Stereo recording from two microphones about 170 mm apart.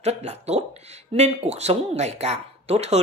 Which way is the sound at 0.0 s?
40° right (ahead or behind).